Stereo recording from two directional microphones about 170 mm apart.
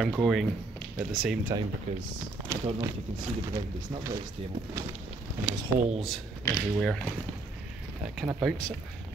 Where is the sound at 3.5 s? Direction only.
20° right (ahead or behind).